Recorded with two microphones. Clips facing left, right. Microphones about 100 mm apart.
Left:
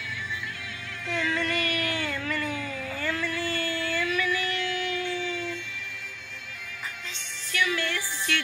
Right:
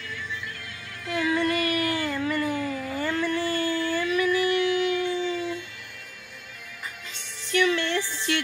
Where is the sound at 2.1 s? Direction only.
20° right (ahead or behind).